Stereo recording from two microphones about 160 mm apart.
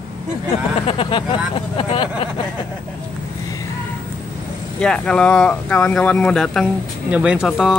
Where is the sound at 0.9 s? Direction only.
35° left (ahead or behind).